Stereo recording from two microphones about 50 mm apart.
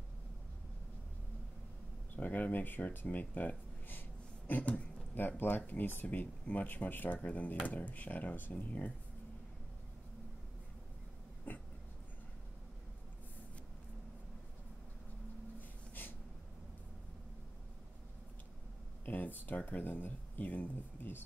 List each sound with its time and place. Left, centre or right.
2.1 s speech: left
6.0 s speech: left
7.2 s speech: left
11.5 s a sound: left
16.0 s a sound: left
19.0 s speech: left